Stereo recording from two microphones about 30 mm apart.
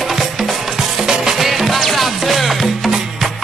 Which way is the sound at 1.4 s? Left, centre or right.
Centre.